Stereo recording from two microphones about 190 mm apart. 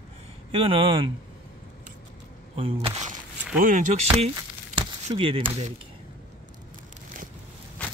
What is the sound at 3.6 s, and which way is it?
Speech, 40° right (ahead or behind).